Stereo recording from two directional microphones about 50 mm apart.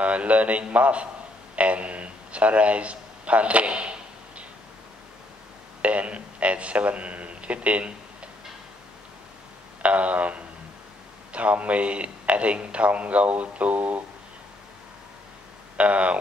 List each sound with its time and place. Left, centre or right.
0.0 s a man's voice: right
5.8 s a man's voice: right
9.8 s a man's voice: right
15.8 s a man's voice: right